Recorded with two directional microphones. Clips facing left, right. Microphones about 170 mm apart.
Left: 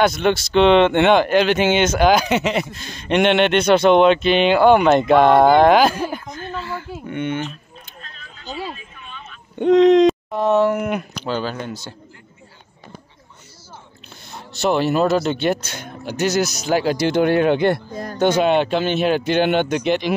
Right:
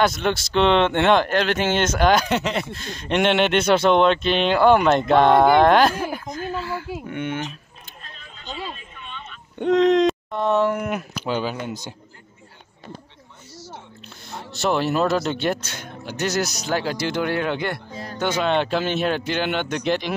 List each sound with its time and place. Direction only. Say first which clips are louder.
0.0 s speech: left 4 dB; centre (ahead or behind)
8.0 s a sound: even; 5° left (ahead or behind)
11.2 s speech: even; 15° right (ahead or behind)
14.6 s speech: left 3 dB; centre (ahead or behind)
15.7 s speech: left 4 dB; 10° left (ahead or behind)
16.3 s speech: left 4 dB; centre (ahead or behind)
16.6 s speech: left 6 dB; 15° left (ahead or behind)
18.4 s speech: left 4 dB; 5° left (ahead or behind)
19.2 s speech: left 7 dB; 20° left (ahead or behind)
19.7 s speech: left 4 dB; centre (ahead or behind)